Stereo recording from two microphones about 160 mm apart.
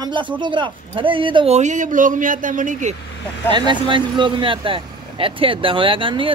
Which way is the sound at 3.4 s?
30° right (ahead or behind).